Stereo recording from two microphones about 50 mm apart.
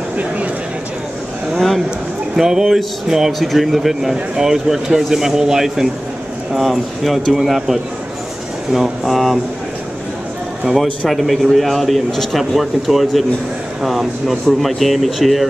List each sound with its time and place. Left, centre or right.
1.5 s speech: centre
2.3 s speech: centre
9.0 s speech: centre
10.6 s speech: centre